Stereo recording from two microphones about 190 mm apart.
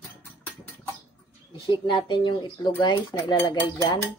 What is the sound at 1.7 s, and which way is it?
Speech, 25° left (ahead or behind).